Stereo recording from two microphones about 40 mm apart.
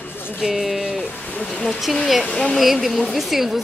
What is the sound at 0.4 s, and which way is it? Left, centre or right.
Speech, centre.